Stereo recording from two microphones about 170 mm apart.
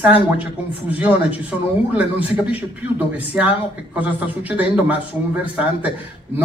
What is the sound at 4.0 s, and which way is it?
Speech, 10° right (ahead or behind).